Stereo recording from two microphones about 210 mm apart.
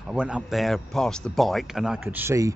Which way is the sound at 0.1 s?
5° right (ahead or behind).